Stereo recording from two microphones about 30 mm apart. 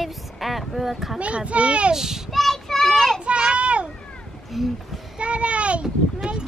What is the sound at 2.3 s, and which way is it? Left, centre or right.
Child singing, centre.